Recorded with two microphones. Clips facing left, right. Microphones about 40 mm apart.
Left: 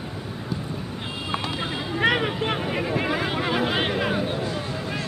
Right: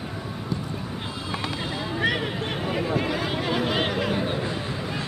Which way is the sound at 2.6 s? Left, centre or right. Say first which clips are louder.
Even; centre.